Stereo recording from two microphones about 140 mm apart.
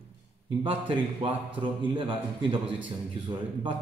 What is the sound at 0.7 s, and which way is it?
A man's voice, 40° right (ahead or behind).